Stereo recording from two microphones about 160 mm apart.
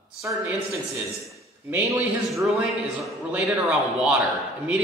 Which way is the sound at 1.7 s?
15° right (ahead or behind).